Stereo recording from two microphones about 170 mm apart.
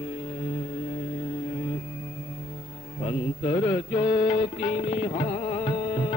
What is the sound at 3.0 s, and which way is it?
Mantra, 30° left (ahead or behind).